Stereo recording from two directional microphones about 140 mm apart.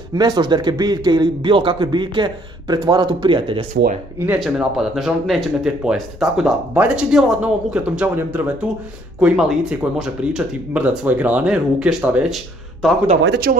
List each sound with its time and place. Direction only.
0.1 s a man's voice: 30° right (ahead or behind)
4.4 s speech: centre (ahead or behind)
12.8 s speech: 5° left (ahead or behind)
13.5 s speech: 90° right